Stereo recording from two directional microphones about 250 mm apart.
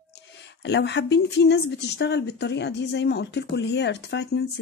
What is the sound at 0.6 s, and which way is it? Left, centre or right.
Speech, left.